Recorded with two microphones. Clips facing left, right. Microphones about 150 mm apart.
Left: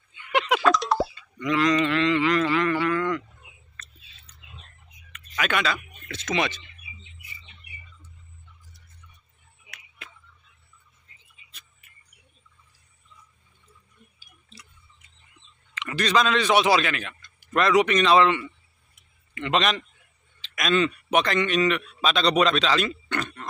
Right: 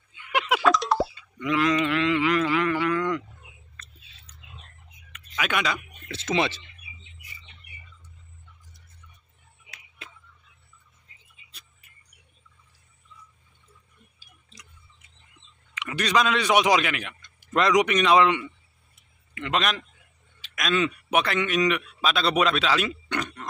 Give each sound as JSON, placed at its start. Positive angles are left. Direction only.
{"t": 0.2, "sound": "a sound", "side_deg": -5}
{"t": 5.4, "sound": "speech", "side_deg": -10}
{"t": 6.3, "sound": "speech", "side_deg": -30}
{"t": 15.7, "sound": "a man's voice", "side_deg": -10}
{"t": 19.3, "sound": "a man's voice", "side_deg": 0}